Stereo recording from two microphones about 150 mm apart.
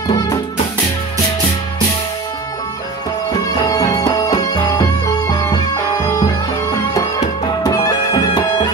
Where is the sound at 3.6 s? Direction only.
25° left (ahead or behind).